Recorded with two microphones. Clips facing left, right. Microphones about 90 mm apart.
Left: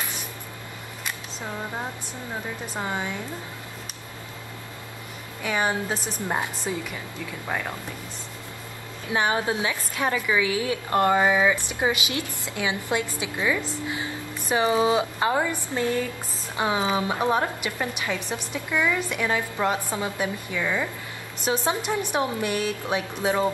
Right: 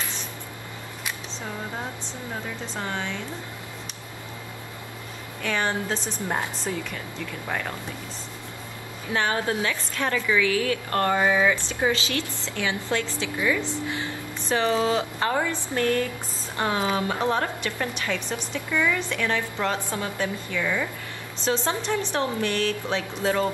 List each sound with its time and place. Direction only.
2.6 s a woman's voice: 15° left (ahead or behind)
5.4 s a woman's voice: 10° left (ahead or behind)
9.1 s a woman's voice: 15° left (ahead or behind)
13.8 s music: 15° left (ahead or behind)
14.5 s a woman's voice: 15° left (ahead or behind)